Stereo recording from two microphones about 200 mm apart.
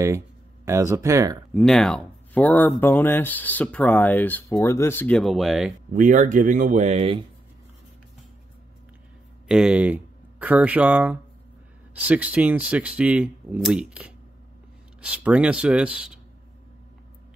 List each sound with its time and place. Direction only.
0.7 s speech: 15° right (ahead or behind)
1.5 s speech: centre (ahead or behind)
5.9 s speech: 40° right (ahead or behind)
9.5 s speech: 5° right (ahead or behind)